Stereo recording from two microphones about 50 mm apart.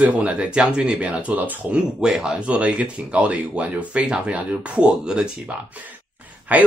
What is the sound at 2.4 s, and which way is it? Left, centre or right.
Speech, right.